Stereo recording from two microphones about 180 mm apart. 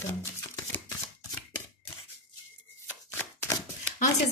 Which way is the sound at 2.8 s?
15° left (ahead or behind).